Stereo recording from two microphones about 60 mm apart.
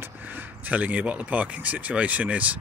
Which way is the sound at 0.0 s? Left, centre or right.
Right.